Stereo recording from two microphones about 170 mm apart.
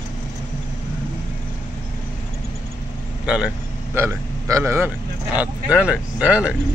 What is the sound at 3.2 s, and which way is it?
Speech, 5° right (ahead or behind).